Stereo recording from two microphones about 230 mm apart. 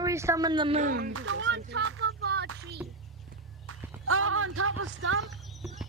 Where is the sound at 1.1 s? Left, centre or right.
Right.